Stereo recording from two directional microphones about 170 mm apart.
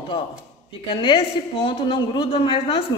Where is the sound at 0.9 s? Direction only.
30° left (ahead or behind).